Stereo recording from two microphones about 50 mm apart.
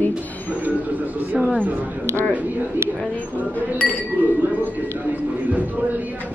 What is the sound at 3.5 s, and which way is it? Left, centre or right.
Speech, left.